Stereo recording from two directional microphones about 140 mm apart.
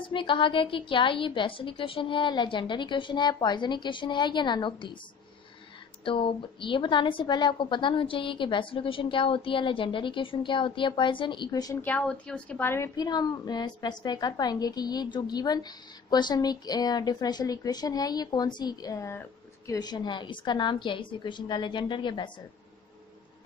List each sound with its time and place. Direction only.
0.0 s a woman's voice: 35° left (ahead or behind)
6.0 s a woman's voice: 40° left (ahead or behind)
11.8 s a woman's voice: 10° left (ahead or behind)
12.9 s a woman's voice: 30° left (ahead or behind)